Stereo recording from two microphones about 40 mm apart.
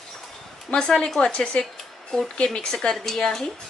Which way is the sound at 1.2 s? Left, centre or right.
Left.